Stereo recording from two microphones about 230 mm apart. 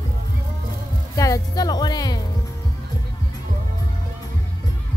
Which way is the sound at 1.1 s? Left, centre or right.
Centre.